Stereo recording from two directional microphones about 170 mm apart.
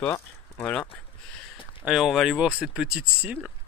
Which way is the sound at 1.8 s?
5° right (ahead or behind).